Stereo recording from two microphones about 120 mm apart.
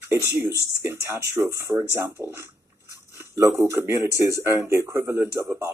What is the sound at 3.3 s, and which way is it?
A man's voice, 25° right (ahead or behind).